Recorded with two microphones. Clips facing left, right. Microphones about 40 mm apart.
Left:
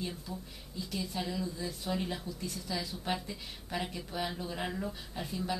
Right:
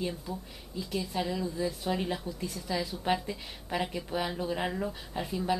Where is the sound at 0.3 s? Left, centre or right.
Centre.